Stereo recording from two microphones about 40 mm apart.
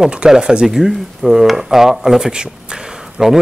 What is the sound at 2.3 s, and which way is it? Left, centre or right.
Speech, centre.